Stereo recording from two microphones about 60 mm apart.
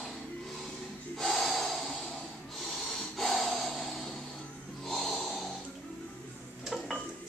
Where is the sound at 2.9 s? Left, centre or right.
Centre.